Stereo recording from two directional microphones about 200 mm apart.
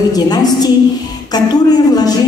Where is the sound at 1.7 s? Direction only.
20° left (ahead or behind).